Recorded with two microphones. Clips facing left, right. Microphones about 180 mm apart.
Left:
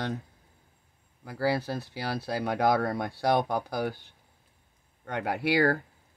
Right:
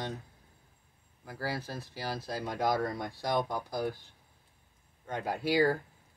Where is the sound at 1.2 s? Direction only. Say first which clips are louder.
Left 9 dB; 75° left (ahead or behind).